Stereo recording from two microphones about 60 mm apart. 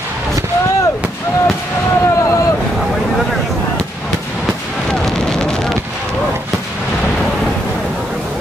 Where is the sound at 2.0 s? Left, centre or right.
Left.